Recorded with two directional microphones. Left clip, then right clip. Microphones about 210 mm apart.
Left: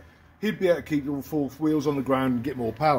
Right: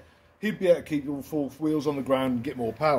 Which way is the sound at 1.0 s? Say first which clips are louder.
Left 2 dB; 25° left (ahead or behind).